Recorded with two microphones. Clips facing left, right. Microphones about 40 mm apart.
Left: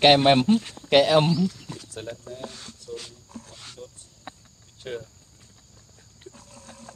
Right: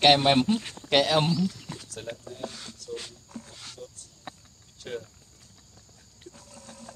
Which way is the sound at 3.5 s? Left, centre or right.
Centre.